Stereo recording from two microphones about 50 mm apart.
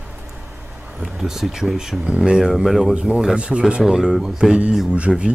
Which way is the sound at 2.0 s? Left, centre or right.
Right.